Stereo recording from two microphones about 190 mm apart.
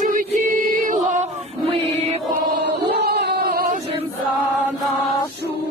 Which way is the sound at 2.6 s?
60° right (ahead or behind).